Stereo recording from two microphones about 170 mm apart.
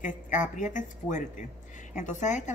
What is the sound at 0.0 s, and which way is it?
A woman's voice, 50° left (ahead or behind).